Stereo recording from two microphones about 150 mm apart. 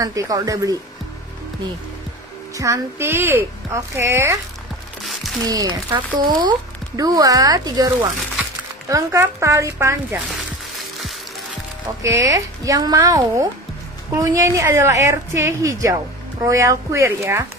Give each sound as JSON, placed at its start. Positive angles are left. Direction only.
{"t": 0.0, "sound": "a woman's voice", "side_deg": -20}
{"t": 2.5, "sound": "a woman's voice", "side_deg": -20}
{"t": 5.0, "sound": "music", "side_deg": 0}
{"t": 5.5, "sound": "a woman's voice", "side_deg": -25}
{"t": 12.0, "sound": "a woman's voice", "side_deg": -20}